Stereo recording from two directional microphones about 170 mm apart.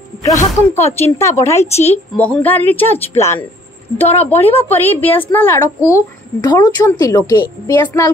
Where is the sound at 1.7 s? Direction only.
40° left (ahead or behind).